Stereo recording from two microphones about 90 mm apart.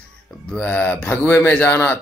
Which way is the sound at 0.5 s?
15° left (ahead or behind).